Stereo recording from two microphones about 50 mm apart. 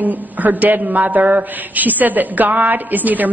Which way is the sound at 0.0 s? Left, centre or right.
Right.